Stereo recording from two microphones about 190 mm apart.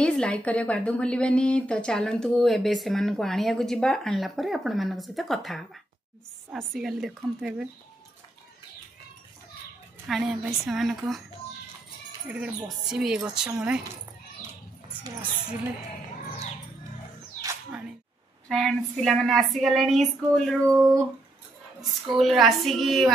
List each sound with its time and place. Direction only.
0.0 s speech: 5° left (ahead or behind)
10.0 s a woman's voice: centre (ahead or behind)
12.3 s speech: 5° right (ahead or behind)
18.5 s speech: 5° left (ahead or behind)
20.6 s speech: 15° right (ahead or behind)
22.2 s speech: centre (ahead or behind)